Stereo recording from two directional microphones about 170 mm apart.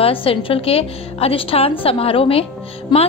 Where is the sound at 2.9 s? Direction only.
25° left (ahead or behind).